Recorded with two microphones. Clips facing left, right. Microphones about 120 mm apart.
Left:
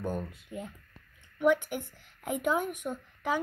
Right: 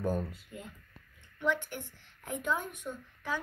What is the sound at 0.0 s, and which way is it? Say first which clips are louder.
Speech: right 2 dB; 5° right (ahead or behind).